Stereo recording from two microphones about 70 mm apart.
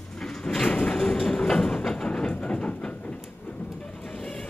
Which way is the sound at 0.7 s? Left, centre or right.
Centre.